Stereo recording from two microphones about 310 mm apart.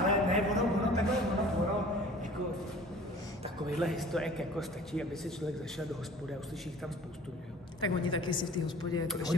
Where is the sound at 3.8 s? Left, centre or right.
Centre.